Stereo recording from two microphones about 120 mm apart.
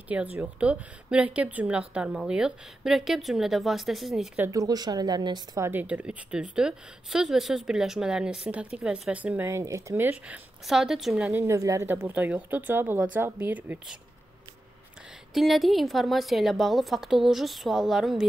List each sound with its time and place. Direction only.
0.1 s a woman's voice: 15° right (ahead or behind)
4.5 s speech: 30° right (ahead or behind)
5.6 s a woman's voice: 15° right (ahead or behind)
10.1 s a woman's voice: 10° right (ahead or behind)
11.4 s a woman's voice: 25° right (ahead or behind)
15.3 s a woman's voice: centre (ahead or behind)